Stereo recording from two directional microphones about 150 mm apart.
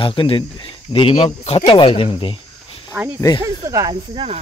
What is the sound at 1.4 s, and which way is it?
Speech, 45° left (ahead or behind).